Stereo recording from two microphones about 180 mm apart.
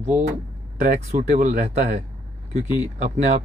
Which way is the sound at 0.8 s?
45° right (ahead or behind).